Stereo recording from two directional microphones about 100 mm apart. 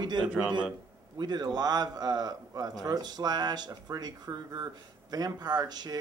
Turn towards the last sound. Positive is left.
turn(degrees=-40)  # may be behind; listen again after turning